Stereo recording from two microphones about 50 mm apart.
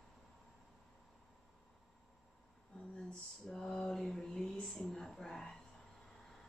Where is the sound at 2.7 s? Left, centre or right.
Centre.